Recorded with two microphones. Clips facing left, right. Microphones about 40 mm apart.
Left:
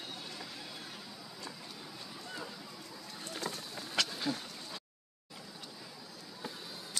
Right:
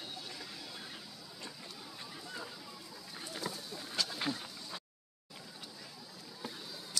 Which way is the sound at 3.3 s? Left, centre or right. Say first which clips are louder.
Left 1 dB; left.